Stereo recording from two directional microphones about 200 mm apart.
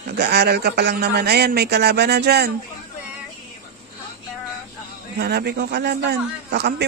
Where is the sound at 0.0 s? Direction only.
55° right (ahead or behind).